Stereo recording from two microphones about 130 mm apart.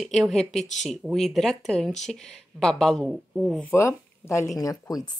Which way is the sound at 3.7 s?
20° left (ahead or behind).